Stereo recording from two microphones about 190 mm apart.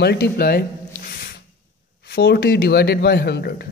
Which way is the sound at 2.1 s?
60° left (ahead or behind).